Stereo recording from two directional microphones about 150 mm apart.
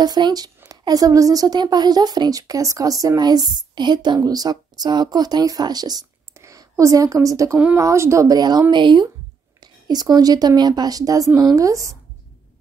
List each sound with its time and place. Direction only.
0.0 s a woman's voice: 30° right (ahead or behind)